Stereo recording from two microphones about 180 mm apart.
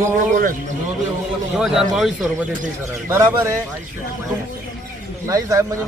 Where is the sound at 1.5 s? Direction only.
Centre (ahead or behind).